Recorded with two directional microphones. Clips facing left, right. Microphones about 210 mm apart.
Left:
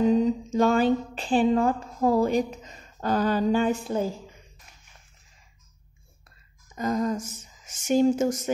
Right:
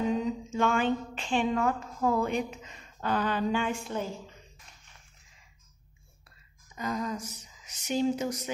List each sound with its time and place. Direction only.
0.0 s speech: 35° left (ahead or behind)
6.7 s speech: 45° left (ahead or behind)